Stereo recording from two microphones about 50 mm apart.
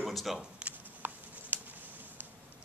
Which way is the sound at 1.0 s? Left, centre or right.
Right.